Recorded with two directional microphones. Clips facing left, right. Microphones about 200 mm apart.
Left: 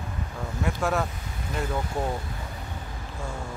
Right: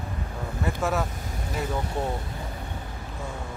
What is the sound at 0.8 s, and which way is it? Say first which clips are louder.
Speech: even; 5° right (ahead or behind).